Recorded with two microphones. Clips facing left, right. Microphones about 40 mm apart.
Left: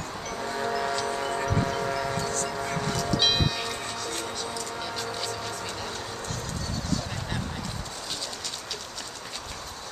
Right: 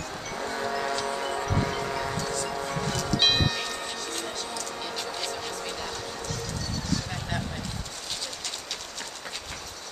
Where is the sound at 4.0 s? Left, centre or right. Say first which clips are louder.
Left 1 dB; centre.